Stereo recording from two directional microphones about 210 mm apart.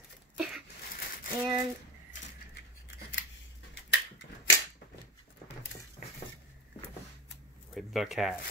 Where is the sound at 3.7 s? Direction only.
60° left (ahead or behind).